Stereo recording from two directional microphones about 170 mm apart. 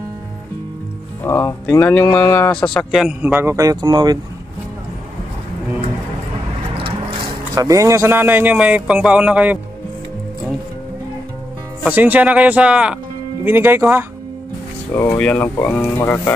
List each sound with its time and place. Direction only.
1.2 s speech: 15° left (ahead or behind); by 4.2 s 25° right (ahead or behind)
7.5 s speech: 20° right (ahead or behind)
11.8 s speech: 10° right (ahead or behind)
15.0 s speech: 10° left (ahead or behind)